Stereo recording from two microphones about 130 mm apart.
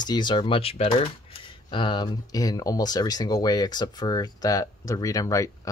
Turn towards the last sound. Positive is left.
turn(degrees=25)  # may be behind; listen again after turning